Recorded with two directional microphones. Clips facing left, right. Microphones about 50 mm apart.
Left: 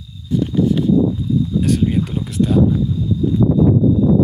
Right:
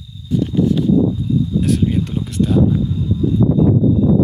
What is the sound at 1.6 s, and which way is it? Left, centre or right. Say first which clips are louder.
Speech: left 1 dB; centre.